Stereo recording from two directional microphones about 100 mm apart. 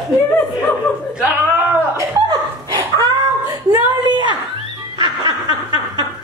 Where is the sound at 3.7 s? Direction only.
50° right (ahead or behind).